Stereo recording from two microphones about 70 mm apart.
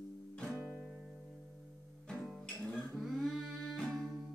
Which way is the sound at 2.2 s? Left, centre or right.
Centre.